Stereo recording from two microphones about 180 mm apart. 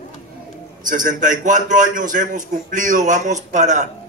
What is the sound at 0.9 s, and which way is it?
A man's voice, 45° right (ahead or behind).